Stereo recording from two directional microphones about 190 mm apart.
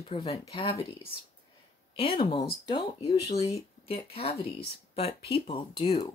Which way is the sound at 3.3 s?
20° left (ahead or behind).